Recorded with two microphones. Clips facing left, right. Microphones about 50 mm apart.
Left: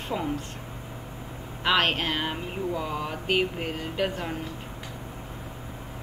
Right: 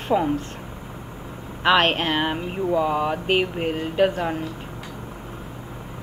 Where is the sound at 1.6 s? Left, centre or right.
Right.